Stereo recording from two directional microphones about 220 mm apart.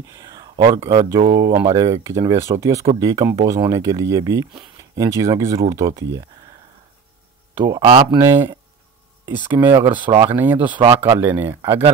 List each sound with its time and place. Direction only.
0.2 s a sound: 20° right (ahead or behind)
0.7 s speech: 15° right (ahead or behind)
7.5 s speech: 15° right (ahead or behind)
9.8 s speech: 25° right (ahead or behind)
10.3 s speech: 10° right (ahead or behind)